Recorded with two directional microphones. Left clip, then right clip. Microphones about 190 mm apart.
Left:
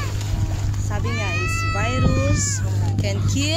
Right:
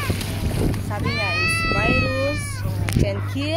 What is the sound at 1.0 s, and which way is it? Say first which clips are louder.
Speech: right 4 dB; 15° right (ahead or behind).